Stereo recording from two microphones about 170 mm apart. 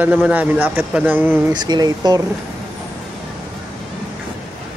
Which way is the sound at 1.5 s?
25° right (ahead or behind).